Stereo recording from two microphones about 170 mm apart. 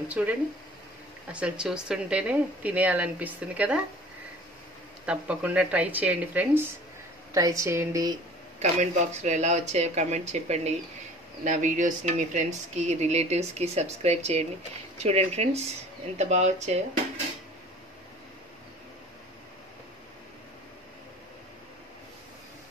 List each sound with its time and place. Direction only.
0.1 s speech: 10° right (ahead or behind)
5.0 s speech: 5° right (ahead or behind)
8.5 s speech: 40° right (ahead or behind)